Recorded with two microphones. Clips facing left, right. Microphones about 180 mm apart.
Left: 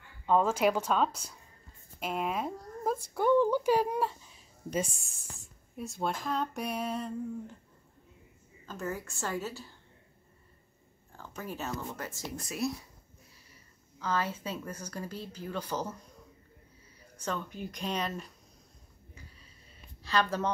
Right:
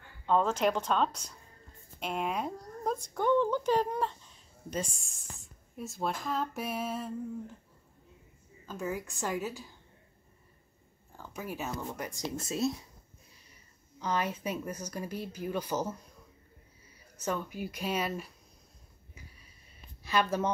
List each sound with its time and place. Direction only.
0.3 s speech: 10° left (ahead or behind)
8.6 s a woman's voice: 10° right (ahead or behind)
11.1 s a woman's voice: 10° right (ahead or behind)
13.9 s a woman's voice: 15° right (ahead or behind)
17.2 s a woman's voice: 10° right (ahead or behind)
20.0 s speech: 10° right (ahead or behind)